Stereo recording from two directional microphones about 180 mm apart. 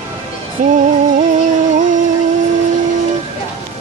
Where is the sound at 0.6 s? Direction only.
50° right (ahead or behind).